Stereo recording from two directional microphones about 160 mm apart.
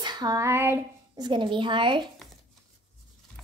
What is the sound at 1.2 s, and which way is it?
Speech, 30° right (ahead or behind).